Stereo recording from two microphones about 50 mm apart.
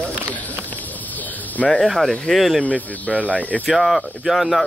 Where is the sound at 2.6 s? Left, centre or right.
Left.